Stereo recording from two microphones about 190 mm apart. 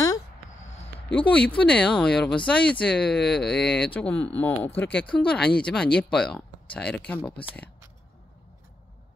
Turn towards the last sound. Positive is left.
turn(degrees=5)  # may be behind; listen again after turning